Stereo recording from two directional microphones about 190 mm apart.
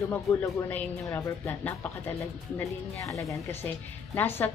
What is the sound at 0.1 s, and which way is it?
A woman's voice, 10° left (ahead or behind).